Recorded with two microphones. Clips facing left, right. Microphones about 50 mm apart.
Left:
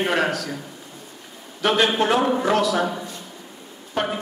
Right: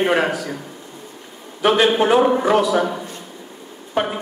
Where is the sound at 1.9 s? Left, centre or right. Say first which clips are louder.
Right 5 dB; centre.